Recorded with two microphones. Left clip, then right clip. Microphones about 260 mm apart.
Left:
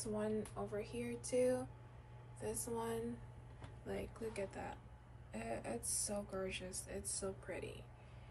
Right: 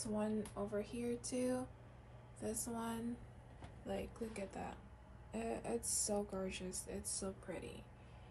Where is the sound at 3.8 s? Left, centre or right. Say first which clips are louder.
Even; centre.